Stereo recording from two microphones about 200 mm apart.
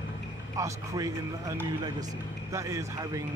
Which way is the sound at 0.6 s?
15° right (ahead or behind).